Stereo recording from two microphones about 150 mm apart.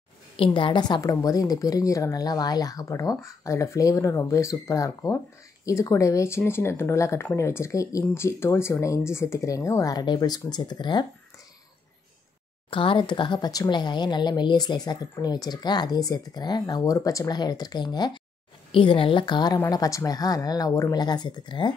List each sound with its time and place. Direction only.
0.4 s speech: 35° left (ahead or behind)
12.6 s a woman's voice: 35° left (ahead or behind)